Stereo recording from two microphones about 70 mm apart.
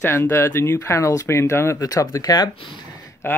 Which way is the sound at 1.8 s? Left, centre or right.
Left.